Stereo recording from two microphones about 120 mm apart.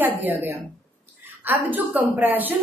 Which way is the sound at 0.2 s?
15° right (ahead or behind).